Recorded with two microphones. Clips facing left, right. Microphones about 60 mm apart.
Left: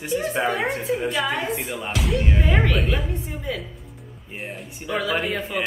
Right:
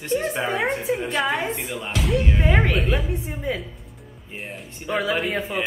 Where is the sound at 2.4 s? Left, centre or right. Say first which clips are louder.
Right 1 dB; centre.